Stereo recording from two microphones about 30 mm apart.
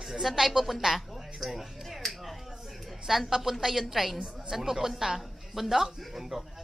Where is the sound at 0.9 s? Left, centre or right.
Centre.